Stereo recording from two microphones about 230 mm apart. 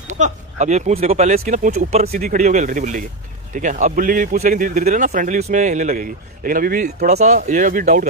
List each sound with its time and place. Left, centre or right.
0.2 s a man's voice: right